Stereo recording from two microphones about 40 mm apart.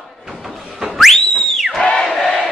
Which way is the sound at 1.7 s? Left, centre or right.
Centre.